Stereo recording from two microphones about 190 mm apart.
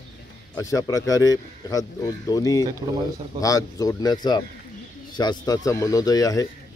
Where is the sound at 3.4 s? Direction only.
20° left (ahead or behind).